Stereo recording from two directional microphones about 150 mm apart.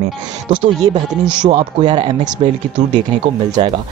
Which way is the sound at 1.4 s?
30° right (ahead or behind).